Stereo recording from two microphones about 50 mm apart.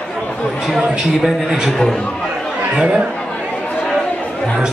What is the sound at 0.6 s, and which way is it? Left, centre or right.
A man's voice, centre.